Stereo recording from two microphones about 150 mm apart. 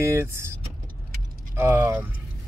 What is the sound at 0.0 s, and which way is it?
Speech, 20° right (ahead or behind).